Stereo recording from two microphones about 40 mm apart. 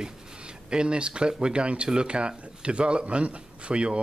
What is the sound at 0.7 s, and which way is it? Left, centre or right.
Speech, right.